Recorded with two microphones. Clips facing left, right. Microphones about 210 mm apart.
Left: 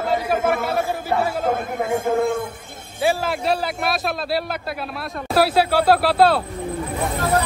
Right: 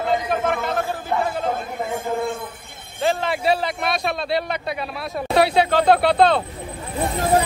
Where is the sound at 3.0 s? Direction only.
5° left (ahead or behind).